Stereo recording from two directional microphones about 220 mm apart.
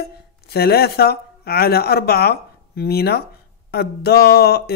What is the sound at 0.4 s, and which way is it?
Speech, 45° left (ahead or behind).